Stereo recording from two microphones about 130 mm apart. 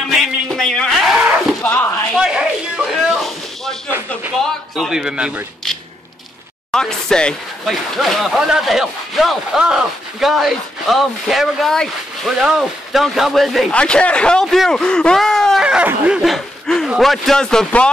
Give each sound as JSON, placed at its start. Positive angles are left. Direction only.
{"t": 0.1, "sound": "a sound", "side_deg": 0}
{"t": 1.6, "sound": "speech", "side_deg": 20}
{"t": 2.1, "sound": "a sound", "side_deg": -5}
{"t": 4.5, "sound": "speech", "side_deg": 0}
{"t": 6.7, "sound": "speech", "side_deg": 5}
{"t": 15.6, "sound": "speech", "side_deg": -10}
{"t": 16.2, "sound": "snicker", "side_deg": 5}
{"t": 16.9, "sound": "speech", "side_deg": 0}